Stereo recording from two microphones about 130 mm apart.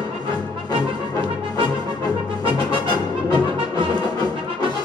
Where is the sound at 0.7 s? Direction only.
40° right (ahead or behind).